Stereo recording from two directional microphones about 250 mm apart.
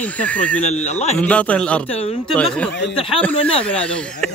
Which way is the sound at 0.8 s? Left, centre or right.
Left.